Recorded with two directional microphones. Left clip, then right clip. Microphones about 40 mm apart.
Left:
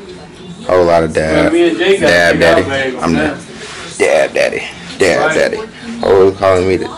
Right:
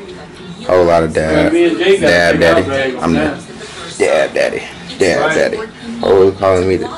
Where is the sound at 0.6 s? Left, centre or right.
Centre.